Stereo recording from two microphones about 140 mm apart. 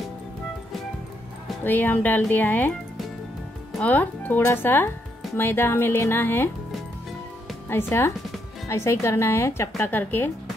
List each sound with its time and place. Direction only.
1.6 s speech: 15° left (ahead or behind)
3.7 s speech: 10° left (ahead or behind)
7.7 s speech: 15° left (ahead or behind)